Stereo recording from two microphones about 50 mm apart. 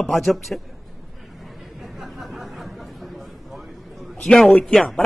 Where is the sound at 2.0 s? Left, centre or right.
Centre.